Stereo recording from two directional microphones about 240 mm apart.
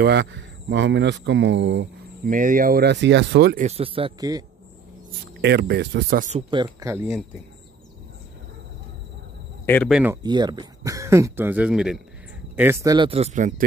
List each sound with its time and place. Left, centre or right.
0.0 s speech: right
2.3 s speech: right
3.6 s speech: right
5.4 s speech: right
6.5 s speech: centre
9.7 s speech: centre
10.2 s speech: centre